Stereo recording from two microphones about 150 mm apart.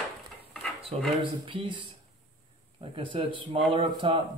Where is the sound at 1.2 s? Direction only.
35° right (ahead or behind).